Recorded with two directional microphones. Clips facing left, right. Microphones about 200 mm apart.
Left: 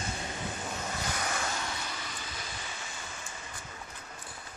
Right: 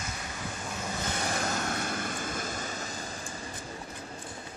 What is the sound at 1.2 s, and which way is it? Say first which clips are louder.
Vehicle: right 4 dB; 40° right (ahead or behind).